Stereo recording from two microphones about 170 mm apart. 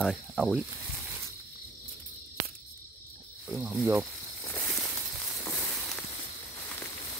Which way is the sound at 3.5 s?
5° right (ahead or behind).